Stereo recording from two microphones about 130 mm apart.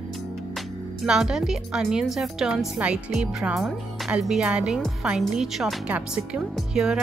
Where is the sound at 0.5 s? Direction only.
5° right (ahead or behind).